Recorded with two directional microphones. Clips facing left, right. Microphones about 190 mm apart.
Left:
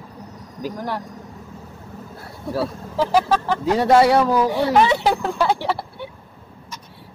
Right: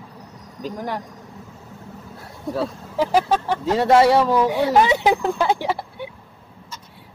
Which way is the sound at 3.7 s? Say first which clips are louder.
Even; centre (ahead or behind).